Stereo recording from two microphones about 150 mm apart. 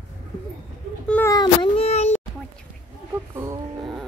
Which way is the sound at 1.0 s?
10° left (ahead or behind).